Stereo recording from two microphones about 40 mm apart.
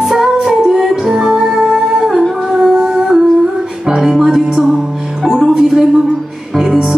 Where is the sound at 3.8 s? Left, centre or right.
Centre.